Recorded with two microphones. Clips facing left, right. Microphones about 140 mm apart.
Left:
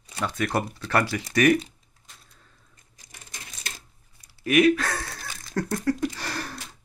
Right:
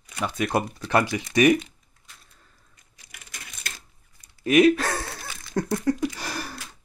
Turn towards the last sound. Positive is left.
turn(degrees=-10)  # may be behind; listen again after turning